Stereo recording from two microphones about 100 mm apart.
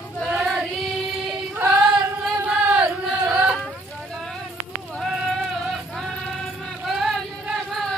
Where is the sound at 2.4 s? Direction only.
10° right (ahead or behind).